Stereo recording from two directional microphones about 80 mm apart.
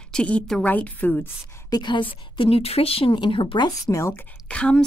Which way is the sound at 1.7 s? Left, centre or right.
Left.